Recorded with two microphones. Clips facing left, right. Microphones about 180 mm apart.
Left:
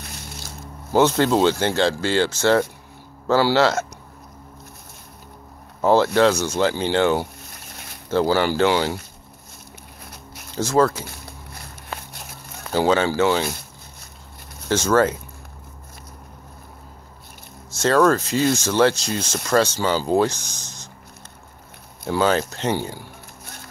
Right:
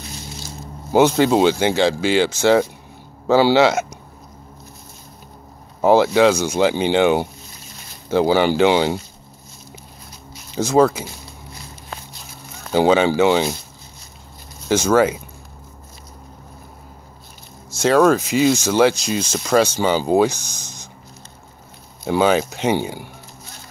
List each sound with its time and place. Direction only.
0.0 s a sound: 60° left (ahead or behind)
0.9 s speech: 10° right (ahead or behind)
5.8 s speech: 10° right (ahead or behind)
7.4 s a sound: 65° left (ahead or behind)
8.1 s speech: 15° right (ahead or behind)
10.5 s speech: 15° right (ahead or behind)
11.1 s a sound: 60° left (ahead or behind)
12.7 s speech: 15° right (ahead or behind)
14.7 s speech: 10° right (ahead or behind)
17.6 s speech: 10° right (ahead or behind)
22.0 s speech: 15° right (ahead or behind)